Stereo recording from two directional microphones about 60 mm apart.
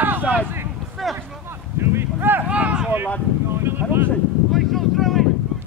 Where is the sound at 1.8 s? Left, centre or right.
Right.